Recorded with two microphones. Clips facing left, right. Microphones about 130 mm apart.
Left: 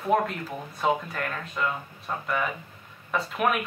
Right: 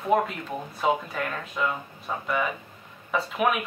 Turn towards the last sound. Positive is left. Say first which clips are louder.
# right 1 dB
turn(degrees=0)  # may be behind; listen again after turning